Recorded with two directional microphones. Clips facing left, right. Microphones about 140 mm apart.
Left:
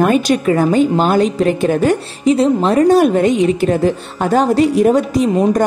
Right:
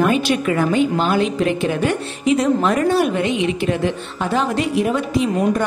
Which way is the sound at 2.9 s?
45° left (ahead or behind).